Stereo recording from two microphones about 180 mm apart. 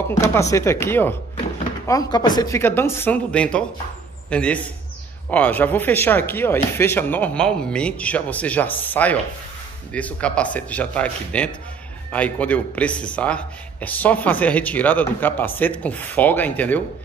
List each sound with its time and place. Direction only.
0.1 s a man's voice: 15° left (ahead or behind)